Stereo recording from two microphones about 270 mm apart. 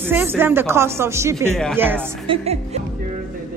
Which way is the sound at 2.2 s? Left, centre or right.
Right.